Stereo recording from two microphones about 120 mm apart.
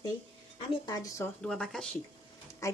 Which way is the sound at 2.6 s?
25° left (ahead or behind).